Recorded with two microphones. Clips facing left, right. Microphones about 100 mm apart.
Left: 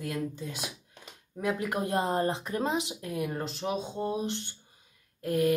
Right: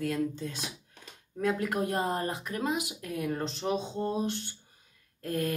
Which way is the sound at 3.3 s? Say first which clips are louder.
Right 1 dB; 5° left (ahead or behind).